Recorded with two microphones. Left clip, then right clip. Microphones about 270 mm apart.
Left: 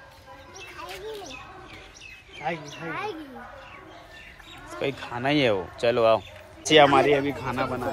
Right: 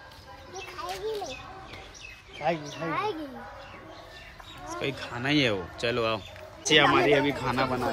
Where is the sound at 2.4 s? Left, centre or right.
Right.